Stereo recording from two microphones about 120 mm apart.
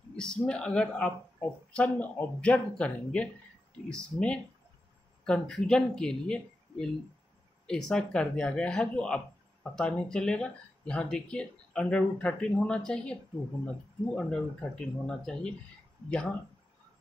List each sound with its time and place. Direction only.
0.1 s speech: 10° left (ahead or behind)